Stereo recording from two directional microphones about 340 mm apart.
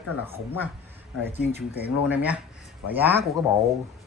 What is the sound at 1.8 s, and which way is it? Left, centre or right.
Speech, centre.